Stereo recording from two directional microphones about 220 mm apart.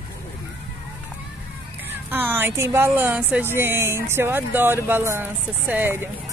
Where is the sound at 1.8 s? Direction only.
10° right (ahead or behind).